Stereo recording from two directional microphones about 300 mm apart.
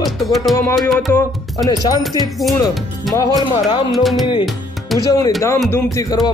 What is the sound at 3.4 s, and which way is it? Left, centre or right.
Speech, centre.